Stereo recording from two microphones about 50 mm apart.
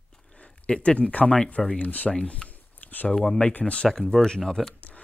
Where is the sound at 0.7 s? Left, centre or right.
Left.